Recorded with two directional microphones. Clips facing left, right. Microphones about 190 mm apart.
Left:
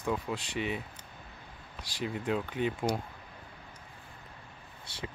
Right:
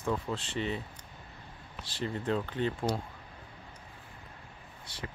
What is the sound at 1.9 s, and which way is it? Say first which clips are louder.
Speech: even; 10° left (ahead or behind).